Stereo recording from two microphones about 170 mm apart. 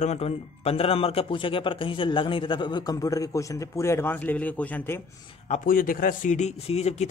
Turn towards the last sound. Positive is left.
turn(degrees=40)  # may be behind; listen again after turning